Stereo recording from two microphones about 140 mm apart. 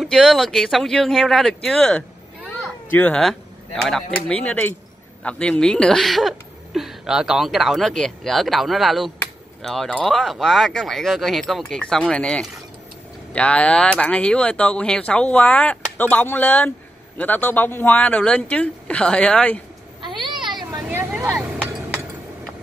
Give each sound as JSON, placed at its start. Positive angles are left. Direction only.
{"t": 0.0, "sound": "speech", "side_deg": 0}
{"t": 20.0, "sound": "a sound", "side_deg": -35}
{"t": 21.2, "sound": "vehicle", "side_deg": 0}